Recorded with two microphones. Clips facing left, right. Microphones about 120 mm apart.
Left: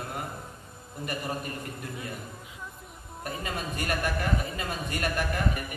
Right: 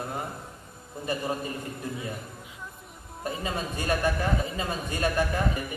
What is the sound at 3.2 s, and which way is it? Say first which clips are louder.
A man's voice: right 3 dB; 25° right (ahead or behind).